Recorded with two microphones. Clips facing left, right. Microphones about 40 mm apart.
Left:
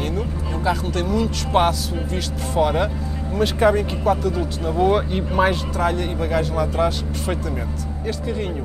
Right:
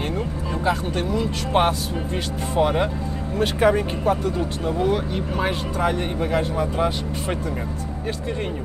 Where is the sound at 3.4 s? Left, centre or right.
Right.